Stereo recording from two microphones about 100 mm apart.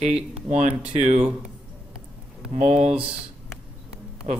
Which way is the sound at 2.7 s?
90° right.